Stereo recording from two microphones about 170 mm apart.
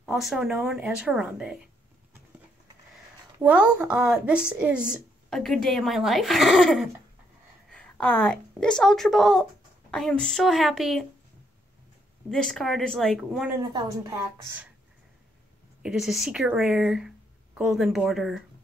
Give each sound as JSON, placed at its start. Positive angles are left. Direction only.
{"t": 0.0, "sound": "speech", "side_deg": 0}
{"t": 3.4, "sound": "a woman's voice", "side_deg": -5}
{"t": 12.3, "sound": "speech", "side_deg": 5}
{"t": 13.6, "sound": "speech", "side_deg": -20}
{"t": 15.8, "sound": "speech", "side_deg": -5}